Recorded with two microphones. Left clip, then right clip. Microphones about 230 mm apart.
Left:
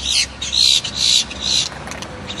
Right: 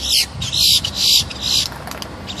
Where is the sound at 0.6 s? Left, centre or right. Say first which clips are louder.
Even; right.